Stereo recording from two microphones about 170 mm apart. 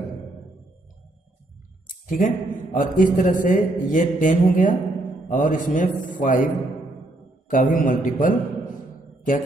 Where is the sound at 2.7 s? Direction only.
55° left (ahead or behind).